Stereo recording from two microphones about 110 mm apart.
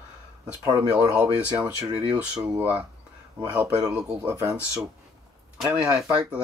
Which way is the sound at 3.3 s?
15° right (ahead or behind).